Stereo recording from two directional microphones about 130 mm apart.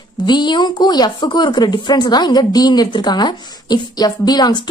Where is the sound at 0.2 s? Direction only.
35° left (ahead or behind).